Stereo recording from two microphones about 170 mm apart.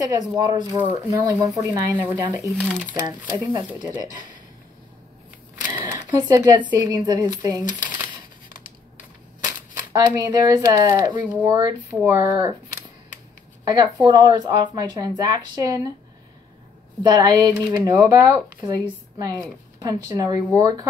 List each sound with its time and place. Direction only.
0.0 s speech: 25° right (ahead or behind)
2.4 s speech: centre (ahead or behind)
3.1 s speech: 20° right (ahead or behind)
5.7 s a sound: 15° right (ahead or behind)
6.2 s speech: 25° right (ahead or behind)
9.8 s speech: 20° right (ahead or behind)
13.7 s speech: 25° right (ahead or behind)
17.0 s speech: 25° right (ahead or behind)